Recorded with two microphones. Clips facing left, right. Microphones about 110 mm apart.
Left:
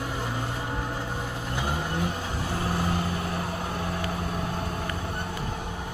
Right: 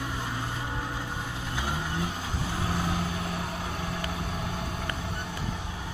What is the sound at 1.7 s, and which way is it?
Vehicle, 55° left (ahead or behind).